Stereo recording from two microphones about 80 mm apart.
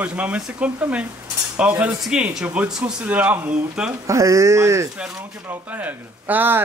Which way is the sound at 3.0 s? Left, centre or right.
Centre.